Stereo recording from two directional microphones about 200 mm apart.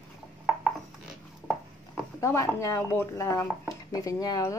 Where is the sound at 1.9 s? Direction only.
15° left (ahead or behind).